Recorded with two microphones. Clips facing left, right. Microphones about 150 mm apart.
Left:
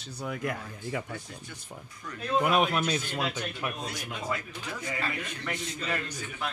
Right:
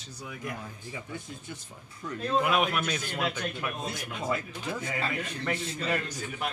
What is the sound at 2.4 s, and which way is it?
Speech, 35° left (ahead or behind).